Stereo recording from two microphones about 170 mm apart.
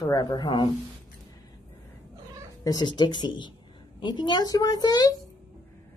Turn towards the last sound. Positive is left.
turn(degrees=25)  # may be behind; listen again after turning